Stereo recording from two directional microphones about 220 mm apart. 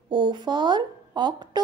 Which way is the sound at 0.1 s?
20° right (ahead or behind).